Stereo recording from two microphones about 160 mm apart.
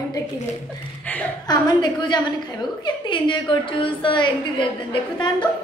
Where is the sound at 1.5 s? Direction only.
25° left (ahead or behind).